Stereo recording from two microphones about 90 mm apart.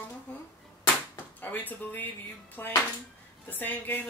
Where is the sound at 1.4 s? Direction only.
20° left (ahead or behind).